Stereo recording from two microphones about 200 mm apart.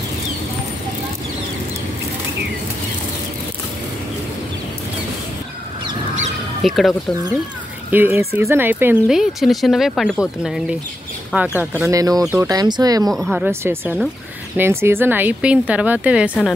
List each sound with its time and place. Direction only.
6.6 s speech: centre (ahead or behind)
7.9 s a woman's voice: 10° right (ahead or behind)
11.9 s a woman's voice: 15° right (ahead or behind)
13.1 s speech: centre (ahead or behind)
13.5 s a woman's voice: 10° right (ahead or behind)